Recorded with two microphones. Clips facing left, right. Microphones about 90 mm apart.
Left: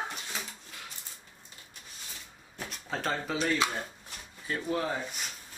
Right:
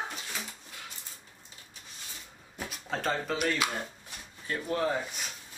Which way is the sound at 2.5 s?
Centre (ahead or behind).